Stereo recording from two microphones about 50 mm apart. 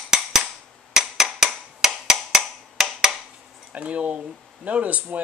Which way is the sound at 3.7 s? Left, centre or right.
Right.